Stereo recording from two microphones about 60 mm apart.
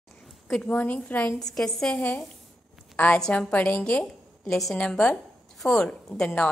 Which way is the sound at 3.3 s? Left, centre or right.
Left.